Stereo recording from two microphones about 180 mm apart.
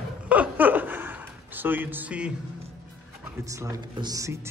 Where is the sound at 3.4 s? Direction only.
20° right (ahead or behind).